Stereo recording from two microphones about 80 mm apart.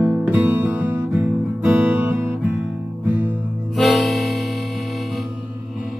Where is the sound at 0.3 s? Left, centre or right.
Right.